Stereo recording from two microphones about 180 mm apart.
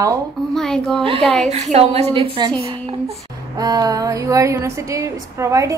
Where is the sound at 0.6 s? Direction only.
5° left (ahead or behind).